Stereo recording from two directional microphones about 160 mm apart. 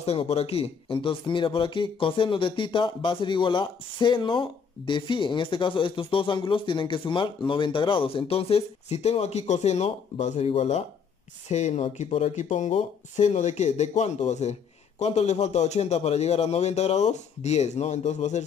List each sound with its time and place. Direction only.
0.0 s speech: 40° left (ahead or behind)